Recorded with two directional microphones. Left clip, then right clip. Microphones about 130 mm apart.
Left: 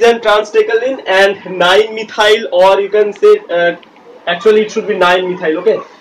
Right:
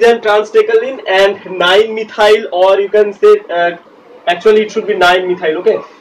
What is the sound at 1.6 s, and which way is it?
Speech, 25° left (ahead or behind).